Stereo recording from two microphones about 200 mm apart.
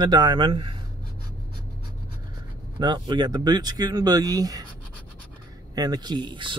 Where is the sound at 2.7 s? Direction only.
20° right (ahead or behind).